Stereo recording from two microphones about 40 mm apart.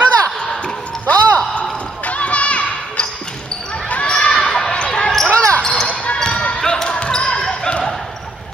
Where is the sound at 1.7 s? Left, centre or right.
Left.